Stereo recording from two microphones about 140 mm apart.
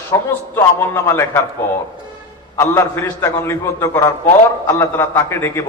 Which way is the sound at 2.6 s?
20° left (ahead or behind).